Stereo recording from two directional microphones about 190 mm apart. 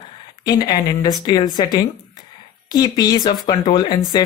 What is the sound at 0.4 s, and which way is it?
Speech, 20° left (ahead or behind).